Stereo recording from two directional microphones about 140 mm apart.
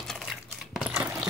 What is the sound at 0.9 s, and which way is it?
Coin, 10° right (ahead or behind).